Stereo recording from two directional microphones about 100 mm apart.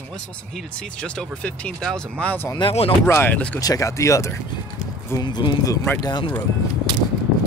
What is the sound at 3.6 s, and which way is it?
Speech, 35° left (ahead or behind).